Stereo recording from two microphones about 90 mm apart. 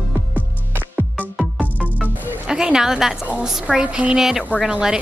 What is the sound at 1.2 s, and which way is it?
Music, 5° right (ahead or behind).